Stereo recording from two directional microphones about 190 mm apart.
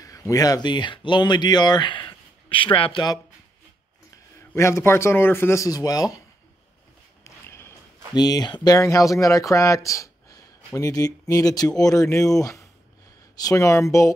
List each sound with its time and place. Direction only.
0.0 s speech: 20° left (ahead or behind)
4.4 s a man's voice: 15° left (ahead or behind)
7.2 s a sound: 15° left (ahead or behind)
8.6 s a man's voice: 15° left (ahead or behind)